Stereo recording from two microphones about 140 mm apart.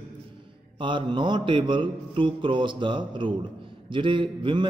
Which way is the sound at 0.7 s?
35° right (ahead or behind).